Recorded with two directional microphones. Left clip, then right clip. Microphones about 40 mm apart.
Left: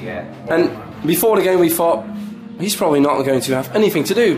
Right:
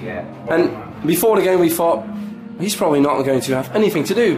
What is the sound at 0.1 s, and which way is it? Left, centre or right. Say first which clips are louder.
A man's voice: even; centre.